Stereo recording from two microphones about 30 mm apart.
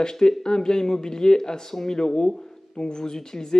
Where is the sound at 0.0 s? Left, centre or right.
Centre.